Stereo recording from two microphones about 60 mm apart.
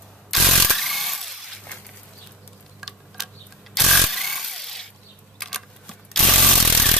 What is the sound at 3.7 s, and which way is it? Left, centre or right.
Power tool, centre.